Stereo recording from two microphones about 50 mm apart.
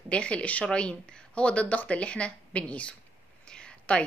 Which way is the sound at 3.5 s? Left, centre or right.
Left.